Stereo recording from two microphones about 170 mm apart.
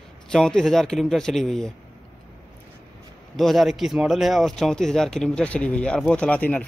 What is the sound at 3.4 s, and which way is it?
Speech, centre (ahead or behind).